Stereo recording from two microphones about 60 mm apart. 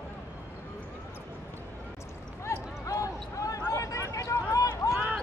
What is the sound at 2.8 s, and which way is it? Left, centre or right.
Basketball bounce, left.